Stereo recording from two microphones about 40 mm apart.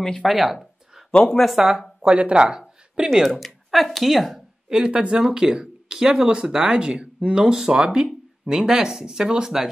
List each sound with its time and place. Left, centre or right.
0.2 s a sound: centre
1.4 s speech: centre
2.0 s speech: right
2.3 s a sound: centre
3.1 s a woman's voice: centre
4.6 s speech: centre